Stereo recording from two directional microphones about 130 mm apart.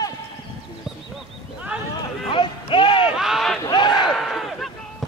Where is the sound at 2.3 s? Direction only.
40° left (ahead or behind).